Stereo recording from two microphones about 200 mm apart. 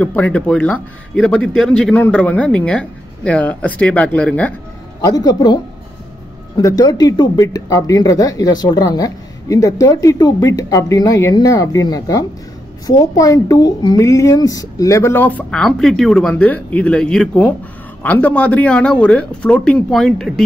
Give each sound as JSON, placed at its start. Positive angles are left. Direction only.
{"t": 0.0, "sound": "speech", "side_deg": 5}
{"t": 5.0, "sound": "speech", "side_deg": 20}